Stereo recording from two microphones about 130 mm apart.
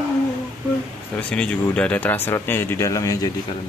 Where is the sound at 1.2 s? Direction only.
5° left (ahead or behind); by 3.3 s 25° left (ahead or behind).